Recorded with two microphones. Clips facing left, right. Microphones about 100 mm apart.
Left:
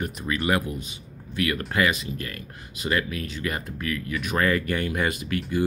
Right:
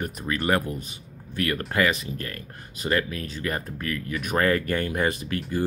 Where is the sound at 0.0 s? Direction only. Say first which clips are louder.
Even; 40° right (ahead or behind).